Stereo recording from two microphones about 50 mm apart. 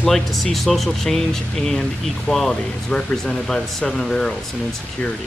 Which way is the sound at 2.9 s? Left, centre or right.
Centre.